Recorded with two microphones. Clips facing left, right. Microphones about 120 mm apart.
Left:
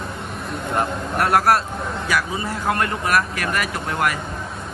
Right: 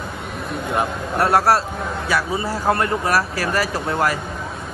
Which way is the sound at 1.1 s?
25° right (ahead or behind).